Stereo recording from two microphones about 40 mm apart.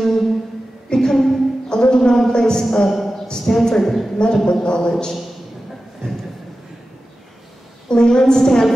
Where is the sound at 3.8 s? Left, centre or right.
Centre.